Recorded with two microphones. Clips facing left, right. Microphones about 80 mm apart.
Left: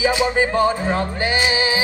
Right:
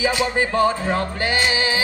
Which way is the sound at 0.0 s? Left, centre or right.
Centre.